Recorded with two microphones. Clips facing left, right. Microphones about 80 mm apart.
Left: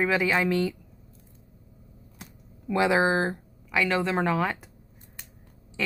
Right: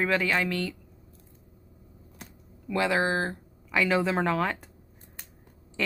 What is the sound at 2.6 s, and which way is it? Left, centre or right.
Speech, centre.